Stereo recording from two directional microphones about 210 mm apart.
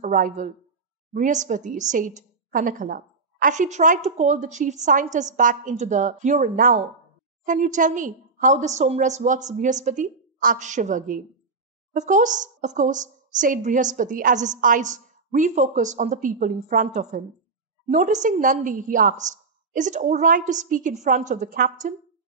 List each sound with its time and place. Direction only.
0.0 s a woman's voice: 40° right (ahead or behind)